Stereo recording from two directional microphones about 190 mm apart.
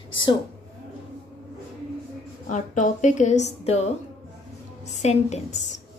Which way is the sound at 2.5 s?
40° left (ahead or behind).